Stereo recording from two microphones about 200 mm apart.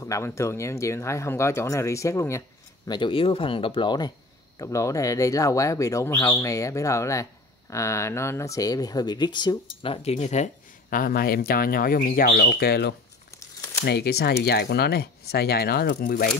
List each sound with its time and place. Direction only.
0.0 s speech: 15° left (ahead or behind)
2.9 s speech: 25° left (ahead or behind)
10.0 s speech: 35° left (ahead or behind); by 12.9 s 55° left (ahead or behind)
13.4 s crumpling: 15° left (ahead or behind)
13.8 s speech: 55° left (ahead or behind)